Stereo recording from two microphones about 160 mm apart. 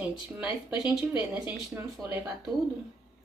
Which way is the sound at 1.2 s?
20° right (ahead or behind).